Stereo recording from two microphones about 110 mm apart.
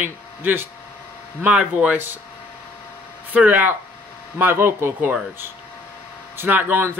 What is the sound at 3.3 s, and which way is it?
Speech, 15° right (ahead or behind).